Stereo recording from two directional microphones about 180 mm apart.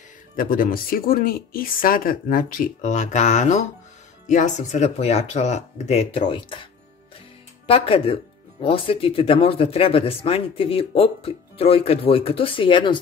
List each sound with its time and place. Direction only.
0.4 s speech: 50° left (ahead or behind); by 13.0 s 25° left (ahead or behind)